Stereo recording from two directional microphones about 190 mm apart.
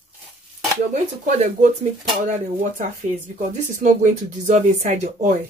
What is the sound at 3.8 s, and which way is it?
Speech, 40° right (ahead or behind).